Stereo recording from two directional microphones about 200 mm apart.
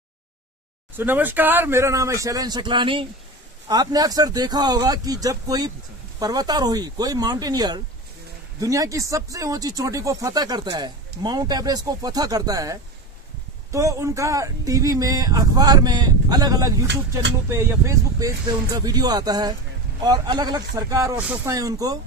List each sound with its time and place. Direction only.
0.9 s speech: 10° right (ahead or behind)